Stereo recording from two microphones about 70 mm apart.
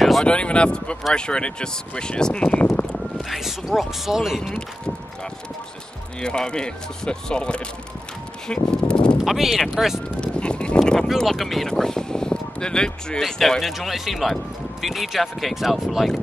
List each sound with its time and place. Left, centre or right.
0.2 s speech: centre
2.6 s speech: left
3.2 s speech: centre
4.4 s speech: centre
6.2 s speech: centre
8.7 s sheep: centre
9.2 s speech: centre
10.2 s speech: centre
13.2 s speech: centre